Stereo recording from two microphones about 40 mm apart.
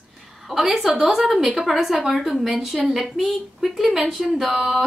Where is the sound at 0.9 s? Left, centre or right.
Centre.